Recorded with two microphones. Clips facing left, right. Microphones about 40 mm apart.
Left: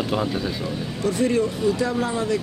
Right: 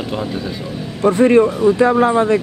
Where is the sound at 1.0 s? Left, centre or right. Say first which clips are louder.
Right 10 dB; right.